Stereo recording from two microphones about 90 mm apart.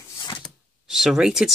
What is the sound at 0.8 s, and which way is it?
Speech, 5° right (ahead or behind).